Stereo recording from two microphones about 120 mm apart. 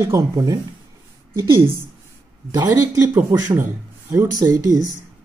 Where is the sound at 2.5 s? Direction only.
25° right (ahead or behind).